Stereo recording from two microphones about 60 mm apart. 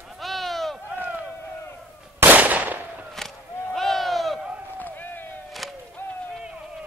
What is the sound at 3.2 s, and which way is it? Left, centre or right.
Artillery fire, centre.